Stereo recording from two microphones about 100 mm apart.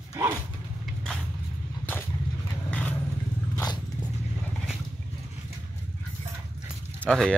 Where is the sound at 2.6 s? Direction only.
15° left (ahead or behind).